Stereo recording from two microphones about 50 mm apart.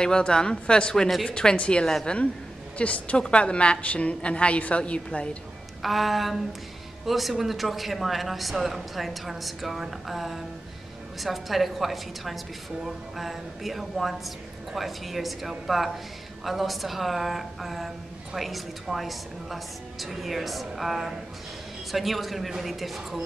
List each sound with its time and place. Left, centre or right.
0.0 s a woman's voice: centre
5.8 s speech: centre